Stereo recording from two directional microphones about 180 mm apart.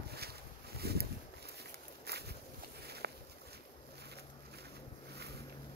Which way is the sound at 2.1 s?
65° right (ahead or behind).